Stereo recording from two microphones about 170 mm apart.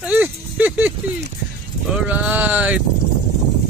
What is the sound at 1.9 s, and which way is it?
Speech, 10° right (ahead or behind).